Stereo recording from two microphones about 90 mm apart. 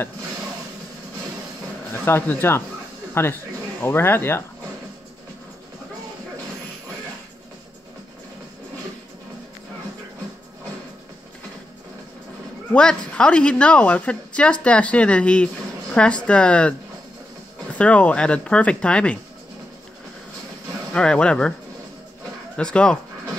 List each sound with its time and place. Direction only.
1.9 s speech: 25° left (ahead or behind)
12.7 s a woman's voice: 10° left (ahead or behind)
17.7 s a woman's voice: 15° left (ahead or behind)
20.9 s a woman's voice: 10° left (ahead or behind)
22.6 s a woman's voice: 10° left (ahead or behind)